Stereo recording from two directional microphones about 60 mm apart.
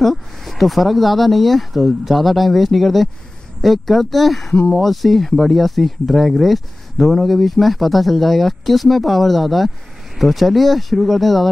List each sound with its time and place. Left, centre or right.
0.0 s speech: centre
4.5 s speech: centre
4.7 s speech: centre